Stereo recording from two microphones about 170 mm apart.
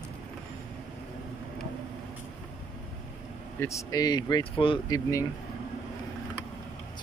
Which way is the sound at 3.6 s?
20° left (ahead or behind).